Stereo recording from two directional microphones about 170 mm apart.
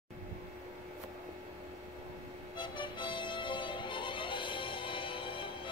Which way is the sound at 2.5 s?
30° left (ahead or behind).